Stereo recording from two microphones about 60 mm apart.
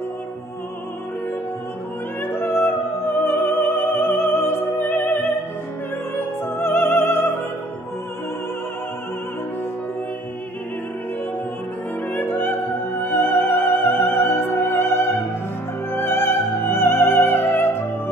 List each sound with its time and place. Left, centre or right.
2.2 s music: left
12.1 s opera: left
15.9 s music: left